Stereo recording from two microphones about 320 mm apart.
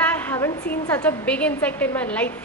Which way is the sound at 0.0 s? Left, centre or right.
Centre.